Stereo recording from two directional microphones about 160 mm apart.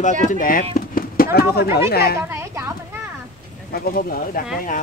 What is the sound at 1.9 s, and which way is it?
Speech, 80° left.